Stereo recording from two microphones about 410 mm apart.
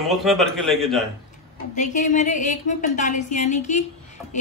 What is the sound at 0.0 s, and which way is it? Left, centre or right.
A man's voice, centre.